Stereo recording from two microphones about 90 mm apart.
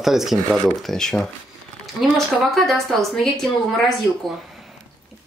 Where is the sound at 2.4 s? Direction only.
Centre (ahead or behind).